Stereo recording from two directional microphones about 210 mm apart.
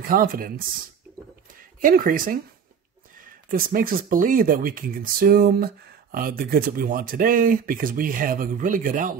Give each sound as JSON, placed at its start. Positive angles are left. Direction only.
{"t": 0.0, "sound": "speech", "side_deg": -45}
{"t": 1.8, "sound": "speech", "side_deg": -40}
{"t": 3.4, "sound": "speech", "side_deg": -40}